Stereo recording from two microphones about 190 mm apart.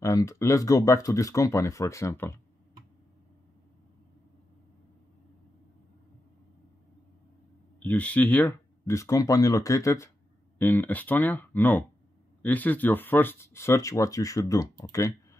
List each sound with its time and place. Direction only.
0.0 s speech: 15° left (ahead or behind)
7.8 s speech: 5° left (ahead or behind)